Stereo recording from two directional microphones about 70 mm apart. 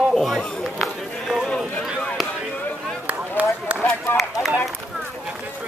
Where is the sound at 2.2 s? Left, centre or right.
Left.